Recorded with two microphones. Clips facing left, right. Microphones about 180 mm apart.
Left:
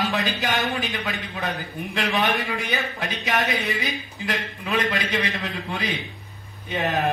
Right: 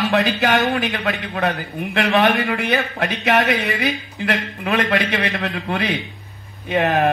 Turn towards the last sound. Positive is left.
turn(degrees=-65)  # may be behind; listen again after turning